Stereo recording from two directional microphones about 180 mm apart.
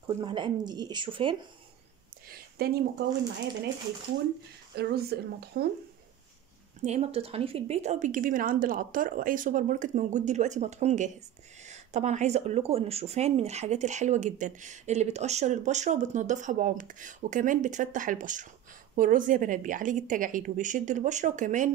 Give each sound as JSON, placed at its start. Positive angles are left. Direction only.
{"t": 0.0, "sound": "speech", "side_deg": -25}
{"t": 2.2, "sound": "a sound", "side_deg": -60}
{"t": 4.7, "sound": "speech", "side_deg": -65}
{"t": 6.8, "sound": "a woman's voice", "side_deg": -35}